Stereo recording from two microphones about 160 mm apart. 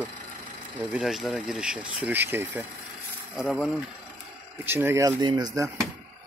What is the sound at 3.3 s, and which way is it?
Speech, centre (ahead or behind).